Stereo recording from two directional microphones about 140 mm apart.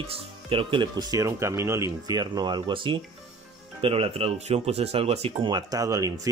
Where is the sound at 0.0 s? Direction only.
40° right (ahead or behind).